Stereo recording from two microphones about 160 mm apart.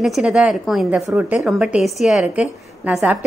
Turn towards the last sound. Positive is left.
turn(degrees=-10)  # may be behind; listen again after turning